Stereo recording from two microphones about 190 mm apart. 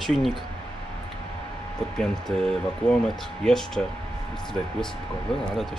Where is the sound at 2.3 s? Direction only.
5° left (ahead or behind).